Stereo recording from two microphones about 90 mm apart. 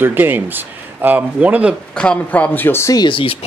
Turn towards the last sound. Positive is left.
turn(degrees=75)  # may be behind; listen again after turning